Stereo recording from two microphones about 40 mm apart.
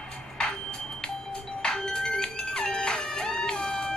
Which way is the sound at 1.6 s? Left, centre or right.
Centre.